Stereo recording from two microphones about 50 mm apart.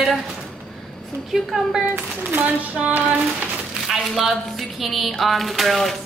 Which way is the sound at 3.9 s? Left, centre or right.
Centre.